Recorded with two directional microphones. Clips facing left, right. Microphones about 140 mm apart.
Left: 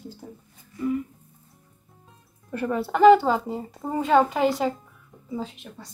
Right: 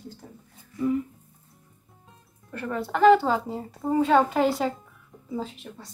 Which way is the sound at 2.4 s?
15° left (ahead or behind).